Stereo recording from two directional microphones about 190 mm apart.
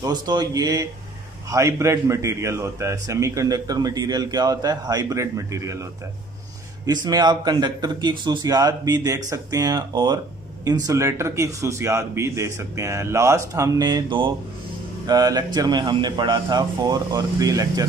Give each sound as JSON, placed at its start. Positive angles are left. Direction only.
{"t": 0.0, "sound": "a man's voice", "side_deg": -20}
{"t": 6.9, "sound": "a man's voice", "side_deg": -20}